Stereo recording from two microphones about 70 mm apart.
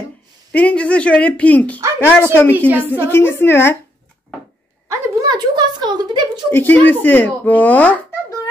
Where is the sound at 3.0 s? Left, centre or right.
Left.